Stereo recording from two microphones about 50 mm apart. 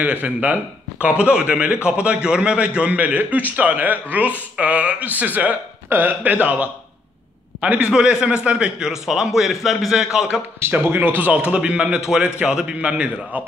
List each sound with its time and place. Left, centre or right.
0.0 s a man's voice: right
2.9 s speech: right
6.4 s a man's voice: right; by 10.2 s centre
10.7 s speech: right
11.2 s a man's voice: right